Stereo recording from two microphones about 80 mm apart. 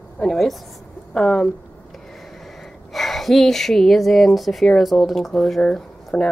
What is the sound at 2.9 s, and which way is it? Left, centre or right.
Speech, centre.